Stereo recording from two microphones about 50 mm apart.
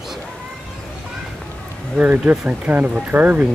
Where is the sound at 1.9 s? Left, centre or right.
Right.